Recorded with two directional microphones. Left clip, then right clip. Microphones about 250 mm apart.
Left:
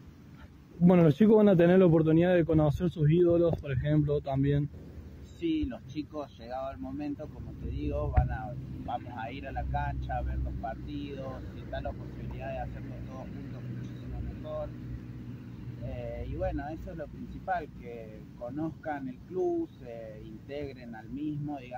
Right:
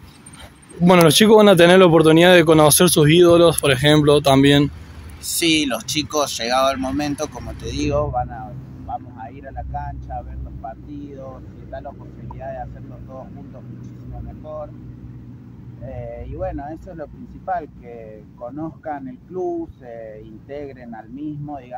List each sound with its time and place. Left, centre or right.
0.8 s speech: centre
16.3 s speech: centre